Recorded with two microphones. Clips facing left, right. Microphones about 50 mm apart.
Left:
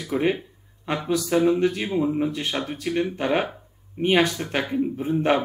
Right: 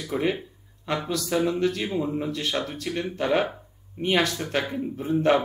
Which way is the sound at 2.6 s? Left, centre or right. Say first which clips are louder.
Left 2 dB; centre.